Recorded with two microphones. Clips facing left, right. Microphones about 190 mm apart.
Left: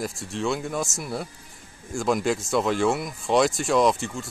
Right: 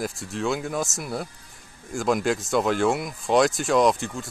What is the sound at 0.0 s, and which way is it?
Speech, centre (ahead or behind).